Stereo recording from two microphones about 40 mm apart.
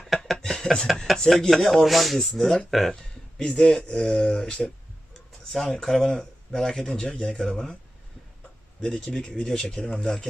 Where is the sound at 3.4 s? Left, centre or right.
Centre.